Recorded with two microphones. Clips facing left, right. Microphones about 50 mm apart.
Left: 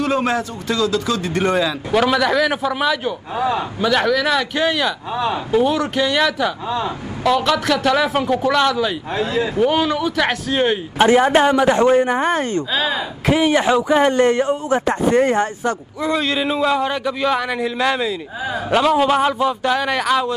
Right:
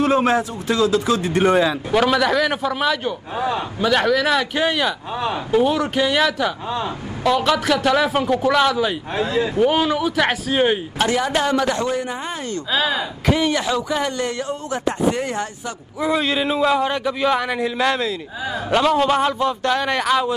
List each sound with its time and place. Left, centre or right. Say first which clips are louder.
0.0 s speech: right 2 dB; right
0.4 s speech: right 1 dB; centre
1.9 s a man's voice: left 1 dB; centre
5.1 s speech: left 3 dB; left
5.5 s a man's voice: even; centre
9.1 s speech: left 1 dB; left
9.7 s speech: left 1 dB; centre
11.0 s speech: left 10 dB; left
12.1 s speech: left 9 dB; left
12.7 s speech: even; centre; by 15.7 s left
16.0 s a man's voice: right 1 dB; centre